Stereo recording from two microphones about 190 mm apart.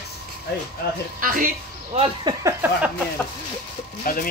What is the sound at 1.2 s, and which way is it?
Speech, 45° right (ahead or behind).